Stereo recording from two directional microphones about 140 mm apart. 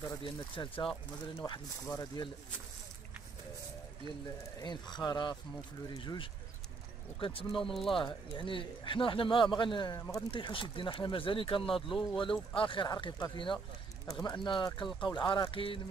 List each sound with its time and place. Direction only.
0.2 s speech: 35° left (ahead or behind)
1.4 s speech: 25° left (ahead or behind)
4.9 s speech: 30° left (ahead or behind)
9.9 s speech: 25° left (ahead or behind)
10.3 s speech: 35° left (ahead or behind)